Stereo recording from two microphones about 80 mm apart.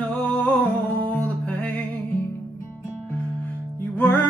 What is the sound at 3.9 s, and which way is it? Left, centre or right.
Music, left.